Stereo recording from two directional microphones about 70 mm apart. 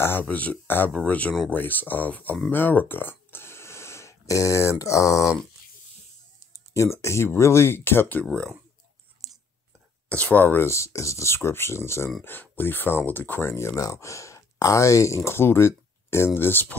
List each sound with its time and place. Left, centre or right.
0.0 s speech: left
6.7 s speech: left
10.0 s speech: centre
10.7 s speech: left
12.3 s speech: left
13.5 s speech: left
15.2 s speech: left